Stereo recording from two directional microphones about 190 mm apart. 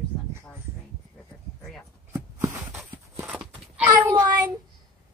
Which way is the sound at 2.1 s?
15° right (ahead or behind).